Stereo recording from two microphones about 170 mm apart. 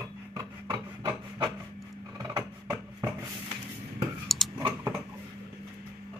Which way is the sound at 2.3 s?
20° right (ahead or behind).